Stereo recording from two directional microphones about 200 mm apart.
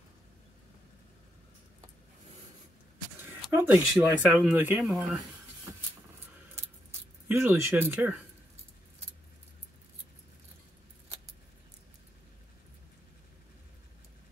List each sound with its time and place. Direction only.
3.5 s speech: 10° right (ahead or behind)
7.2 s speech: 10° right (ahead or behind)